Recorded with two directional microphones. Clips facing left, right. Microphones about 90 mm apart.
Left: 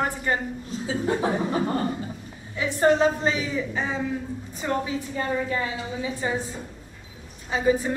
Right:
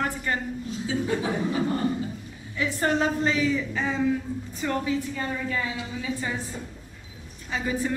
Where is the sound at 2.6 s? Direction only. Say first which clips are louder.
Left 5 dB; 20° left (ahead or behind).